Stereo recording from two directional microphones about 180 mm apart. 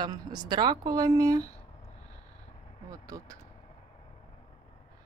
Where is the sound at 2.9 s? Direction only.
20° right (ahead or behind).